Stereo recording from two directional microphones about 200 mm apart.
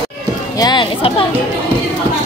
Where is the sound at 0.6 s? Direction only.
25° left (ahead or behind).